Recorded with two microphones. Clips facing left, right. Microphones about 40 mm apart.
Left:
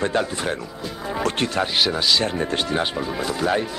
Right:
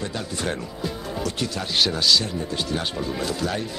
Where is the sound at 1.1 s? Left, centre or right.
Left.